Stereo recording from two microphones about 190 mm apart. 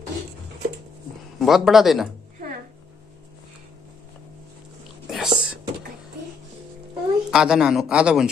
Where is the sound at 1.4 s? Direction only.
Centre (ahead or behind).